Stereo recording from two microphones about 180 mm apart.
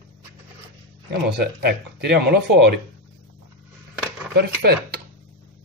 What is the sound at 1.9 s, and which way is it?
Speech, 65° right (ahead or behind).